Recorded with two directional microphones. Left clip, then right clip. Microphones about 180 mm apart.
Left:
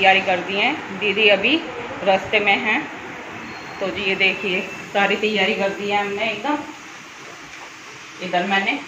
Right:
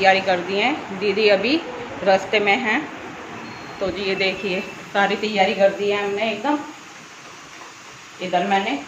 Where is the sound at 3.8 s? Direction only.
15° right (ahead or behind).